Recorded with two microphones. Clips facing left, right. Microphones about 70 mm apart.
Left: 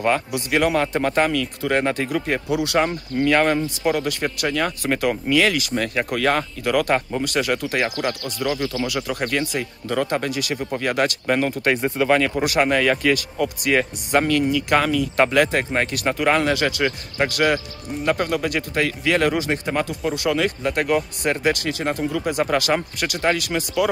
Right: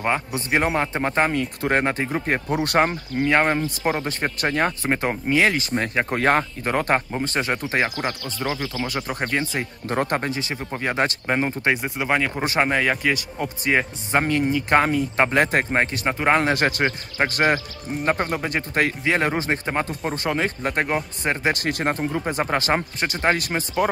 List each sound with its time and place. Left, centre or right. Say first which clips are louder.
0.0 s speech: left 3 dB; right
3.3 s speech: left 1 dB; right